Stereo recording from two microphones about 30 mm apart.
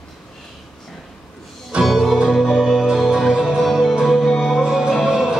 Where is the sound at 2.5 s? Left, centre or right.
Centre.